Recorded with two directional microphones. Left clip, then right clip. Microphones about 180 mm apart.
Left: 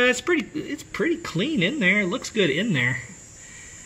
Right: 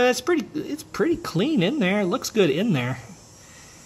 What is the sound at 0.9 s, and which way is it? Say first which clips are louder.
Speech: right 2 dB; 20° right (ahead or behind).